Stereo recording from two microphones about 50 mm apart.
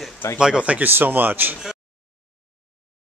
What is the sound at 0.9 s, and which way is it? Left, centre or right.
Speech, right.